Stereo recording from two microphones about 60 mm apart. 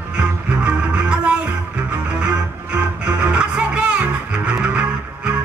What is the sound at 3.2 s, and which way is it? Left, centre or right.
Music, centre.